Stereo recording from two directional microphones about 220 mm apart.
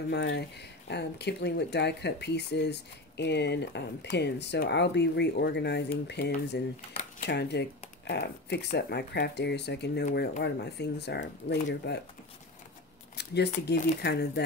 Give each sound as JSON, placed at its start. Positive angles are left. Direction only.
{"t": 0.1, "sound": "speech", "side_deg": 50}
{"t": 13.1, "sound": "speech", "side_deg": 50}